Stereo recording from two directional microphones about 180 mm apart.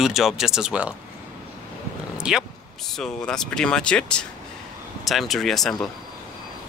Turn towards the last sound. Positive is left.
turn(degrees=0)  # may be behind; listen again after turning